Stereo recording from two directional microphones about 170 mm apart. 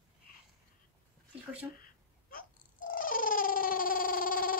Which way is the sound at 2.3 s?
55° left (ahead or behind).